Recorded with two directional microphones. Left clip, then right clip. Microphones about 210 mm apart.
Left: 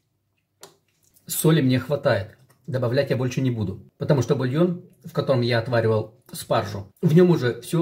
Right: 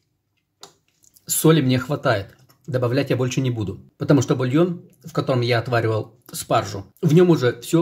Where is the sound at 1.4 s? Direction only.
40° right (ahead or behind).